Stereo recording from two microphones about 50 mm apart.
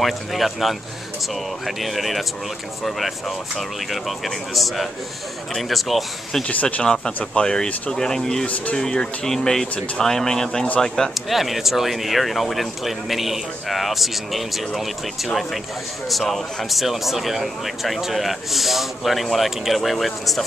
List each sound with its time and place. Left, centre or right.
0.0 s speech: centre
6.4 s speech: left
6.8 s speech: centre
11.1 s speech: centre